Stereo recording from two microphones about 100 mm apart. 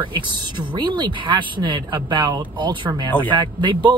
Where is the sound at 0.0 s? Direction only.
55° right (ahead or behind).